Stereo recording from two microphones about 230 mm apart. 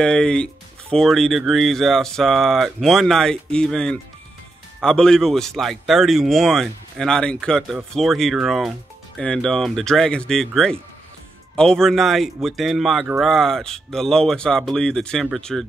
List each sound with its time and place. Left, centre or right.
0.0 s speech: centre